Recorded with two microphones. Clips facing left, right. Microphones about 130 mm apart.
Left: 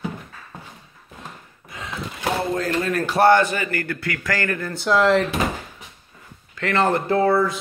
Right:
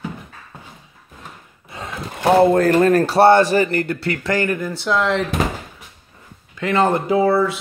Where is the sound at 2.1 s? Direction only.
55° right (ahead or behind); by 4.7 s 15° right (ahead or behind).